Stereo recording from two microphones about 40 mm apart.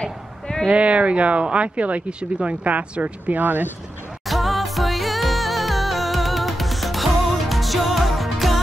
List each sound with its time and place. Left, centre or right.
0.0 s a sound: centre
0.7 s speech: right
4.3 s music: centre